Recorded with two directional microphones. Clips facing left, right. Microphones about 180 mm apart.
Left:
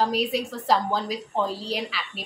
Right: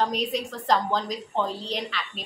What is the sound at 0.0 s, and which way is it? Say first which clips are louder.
A woman's voice: left 2 dB; 5° left (ahead or behind).